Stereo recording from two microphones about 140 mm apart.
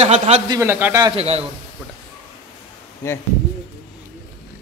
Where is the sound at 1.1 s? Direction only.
45° right (ahead or behind).